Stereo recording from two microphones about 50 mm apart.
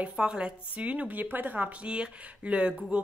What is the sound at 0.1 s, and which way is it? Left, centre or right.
Speech, centre.